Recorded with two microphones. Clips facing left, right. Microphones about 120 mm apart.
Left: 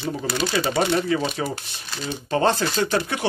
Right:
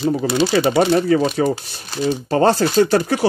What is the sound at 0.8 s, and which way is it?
Speech, 40° right (ahead or behind).